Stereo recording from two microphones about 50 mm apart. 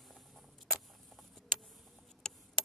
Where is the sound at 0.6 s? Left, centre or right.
Centre.